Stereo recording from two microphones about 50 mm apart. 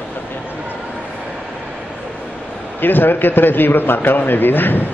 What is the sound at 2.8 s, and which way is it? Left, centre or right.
Speech, left.